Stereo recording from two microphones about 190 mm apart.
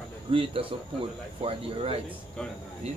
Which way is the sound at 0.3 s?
30° right (ahead or behind).